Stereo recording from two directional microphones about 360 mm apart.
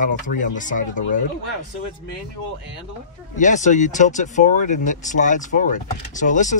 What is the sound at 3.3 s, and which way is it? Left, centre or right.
Speech, left.